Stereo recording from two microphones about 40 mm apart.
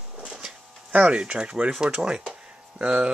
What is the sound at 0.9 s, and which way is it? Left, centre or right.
Speech, right.